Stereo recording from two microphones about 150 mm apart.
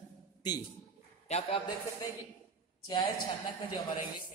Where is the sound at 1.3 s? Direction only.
40° left (ahead or behind).